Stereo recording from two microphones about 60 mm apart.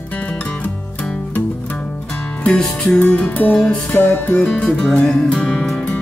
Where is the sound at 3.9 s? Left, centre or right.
Left.